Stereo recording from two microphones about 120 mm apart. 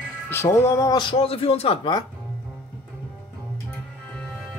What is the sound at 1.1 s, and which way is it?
Speech, 55° left (ahead or behind).